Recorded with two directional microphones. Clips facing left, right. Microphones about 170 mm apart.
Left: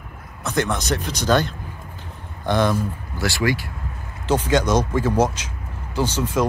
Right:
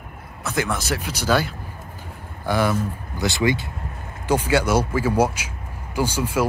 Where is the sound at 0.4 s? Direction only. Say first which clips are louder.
Left 2 dB; 5° right (ahead or behind).